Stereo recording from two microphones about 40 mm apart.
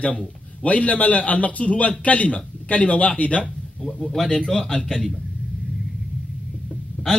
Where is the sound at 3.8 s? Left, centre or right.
Centre.